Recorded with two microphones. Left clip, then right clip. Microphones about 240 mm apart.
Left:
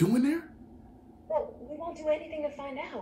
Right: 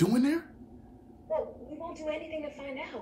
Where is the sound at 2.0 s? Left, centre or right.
Left.